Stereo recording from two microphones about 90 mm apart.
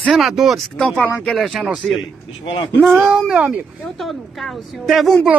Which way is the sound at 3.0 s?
5° right (ahead or behind).